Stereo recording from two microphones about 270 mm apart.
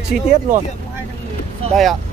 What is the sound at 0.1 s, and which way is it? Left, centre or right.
Speech, right.